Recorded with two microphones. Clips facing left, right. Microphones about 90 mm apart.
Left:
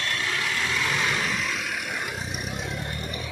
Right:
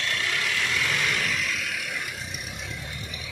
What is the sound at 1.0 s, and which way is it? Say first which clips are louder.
Vehicle: left 1 dB; 30° left (ahead or behind).